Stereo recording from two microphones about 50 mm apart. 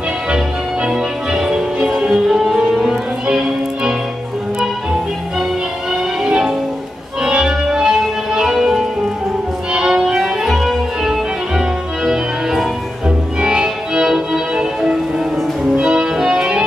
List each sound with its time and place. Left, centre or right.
0.8 s music: centre
2.7 s music: centre
3.3 s music: centre
6.2 s music: centre
7.2 s organ: centre
7.6 s music: centre